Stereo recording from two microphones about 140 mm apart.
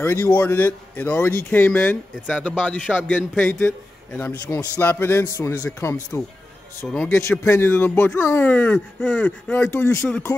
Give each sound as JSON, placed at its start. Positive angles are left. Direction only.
{"t": 0.0, "sound": "speech", "side_deg": 15}